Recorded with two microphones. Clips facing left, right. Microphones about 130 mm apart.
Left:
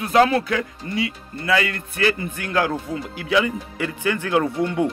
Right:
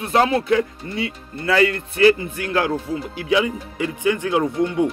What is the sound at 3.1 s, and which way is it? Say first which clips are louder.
Speech: right 1 dB; 20° right (ahead or behind).